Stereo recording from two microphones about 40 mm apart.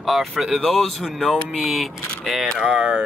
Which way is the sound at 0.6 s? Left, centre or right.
Centre.